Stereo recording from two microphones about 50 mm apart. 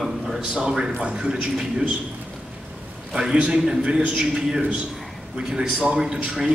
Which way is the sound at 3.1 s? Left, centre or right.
Centre.